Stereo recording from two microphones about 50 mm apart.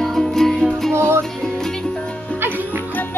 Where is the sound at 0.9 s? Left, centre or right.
Right.